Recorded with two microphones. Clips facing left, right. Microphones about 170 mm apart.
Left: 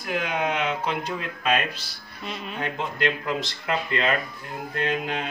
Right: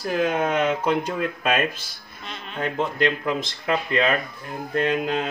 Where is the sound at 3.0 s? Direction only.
50° right (ahead or behind).